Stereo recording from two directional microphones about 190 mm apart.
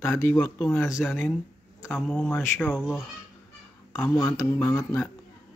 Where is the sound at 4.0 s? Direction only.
10° left (ahead or behind).